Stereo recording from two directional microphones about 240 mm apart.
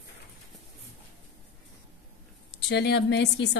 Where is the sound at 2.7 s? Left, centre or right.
Left.